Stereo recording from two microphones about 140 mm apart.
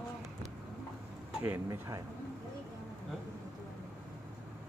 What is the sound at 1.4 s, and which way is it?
Speech, 20° right (ahead or behind).